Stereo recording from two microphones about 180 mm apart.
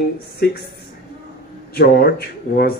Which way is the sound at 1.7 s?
60° left (ahead or behind).